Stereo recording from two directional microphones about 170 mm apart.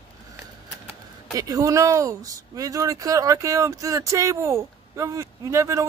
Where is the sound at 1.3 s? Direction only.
20° right (ahead or behind).